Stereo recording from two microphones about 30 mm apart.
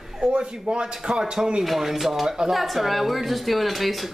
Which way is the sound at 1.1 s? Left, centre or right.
Centre.